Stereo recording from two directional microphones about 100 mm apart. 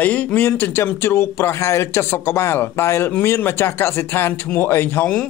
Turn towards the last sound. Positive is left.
turn(degrees=20)  # may be behind; listen again after turning